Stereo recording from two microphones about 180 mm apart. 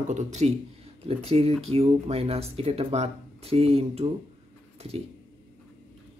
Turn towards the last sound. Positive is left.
turn(degrees=-30)  # may be behind; listen again after turning